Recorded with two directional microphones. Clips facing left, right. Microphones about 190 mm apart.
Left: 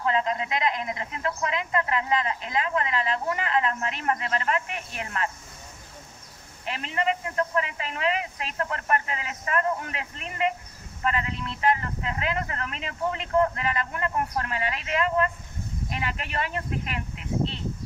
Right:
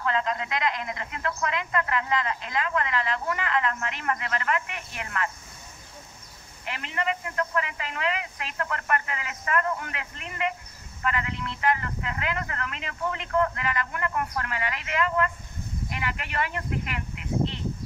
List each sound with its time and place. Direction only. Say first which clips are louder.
0.0 s speech: left 2 dB; 25° left (ahead or behind)
6.7 s speech: left 3 dB; 30° left (ahead or behind)